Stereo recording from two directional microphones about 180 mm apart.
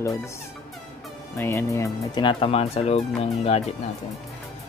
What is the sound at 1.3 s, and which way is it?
Fowl, 15° left (ahead or behind).